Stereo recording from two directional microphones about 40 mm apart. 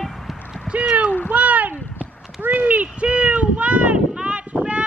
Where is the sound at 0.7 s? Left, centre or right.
Right.